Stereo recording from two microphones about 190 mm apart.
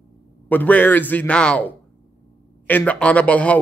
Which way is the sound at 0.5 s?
10° left (ahead or behind).